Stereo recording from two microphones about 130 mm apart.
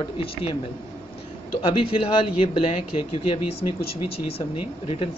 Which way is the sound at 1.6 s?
45° left (ahead or behind).